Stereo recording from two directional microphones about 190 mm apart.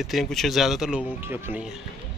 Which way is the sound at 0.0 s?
Centre (ahead or behind).